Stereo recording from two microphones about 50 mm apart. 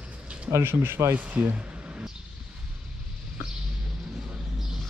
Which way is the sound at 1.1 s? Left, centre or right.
Right.